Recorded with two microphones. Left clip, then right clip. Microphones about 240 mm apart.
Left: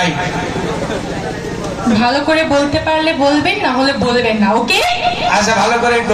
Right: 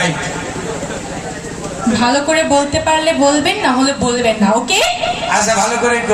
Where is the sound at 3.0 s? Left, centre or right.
Right.